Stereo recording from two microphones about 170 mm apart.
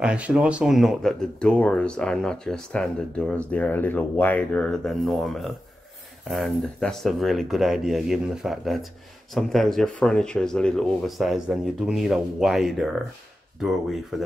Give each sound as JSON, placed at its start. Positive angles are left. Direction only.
{"t": 0.0, "sound": "speech", "side_deg": -5}